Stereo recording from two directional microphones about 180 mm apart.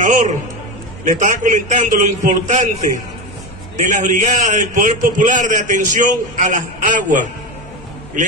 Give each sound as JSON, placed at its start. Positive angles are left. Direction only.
{"t": 0.0, "sound": "a man's voice", "side_deg": -45}
{"t": 3.7, "sound": "a man's voice", "side_deg": -45}